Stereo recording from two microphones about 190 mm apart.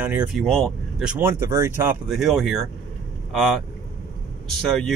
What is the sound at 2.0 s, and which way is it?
Speech, centre (ahead or behind).